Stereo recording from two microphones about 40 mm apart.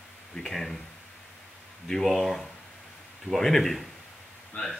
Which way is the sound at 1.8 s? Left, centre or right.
Centre.